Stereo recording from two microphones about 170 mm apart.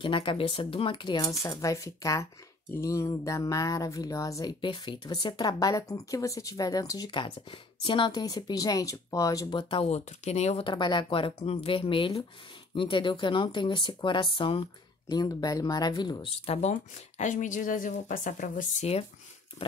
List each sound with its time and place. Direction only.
0.0 s speech: 30° left (ahead or behind)
16.5 s speech: 45° left (ahead or behind)